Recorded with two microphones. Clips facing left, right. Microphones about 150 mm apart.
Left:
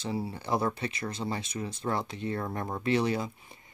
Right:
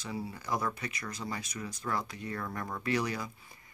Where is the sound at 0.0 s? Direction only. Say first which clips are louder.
Left 5 dB; 30° left (ahead or behind).